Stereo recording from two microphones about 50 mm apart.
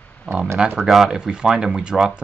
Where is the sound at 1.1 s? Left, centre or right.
Centre.